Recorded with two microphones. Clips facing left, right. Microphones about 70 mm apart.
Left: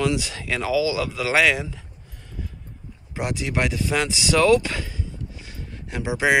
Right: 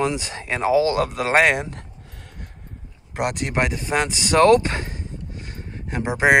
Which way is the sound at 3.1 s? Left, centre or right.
Right.